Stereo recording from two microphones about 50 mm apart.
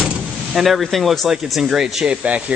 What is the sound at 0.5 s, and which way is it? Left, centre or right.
Speech, centre.